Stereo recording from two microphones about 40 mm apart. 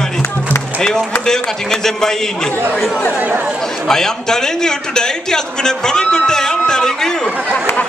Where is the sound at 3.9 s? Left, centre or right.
Centre.